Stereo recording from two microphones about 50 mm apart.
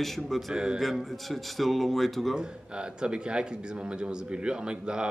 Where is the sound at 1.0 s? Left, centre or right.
Centre.